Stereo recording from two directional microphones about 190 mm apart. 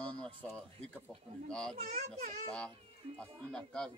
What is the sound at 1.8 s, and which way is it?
Speech, 40° right (ahead or behind).